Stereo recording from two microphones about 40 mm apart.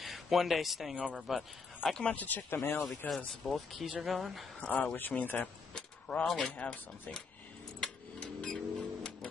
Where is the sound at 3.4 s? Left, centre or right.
Centre.